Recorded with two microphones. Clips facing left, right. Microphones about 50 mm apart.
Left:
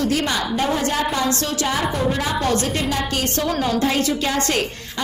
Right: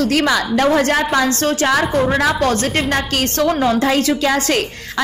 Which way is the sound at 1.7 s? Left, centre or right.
Right.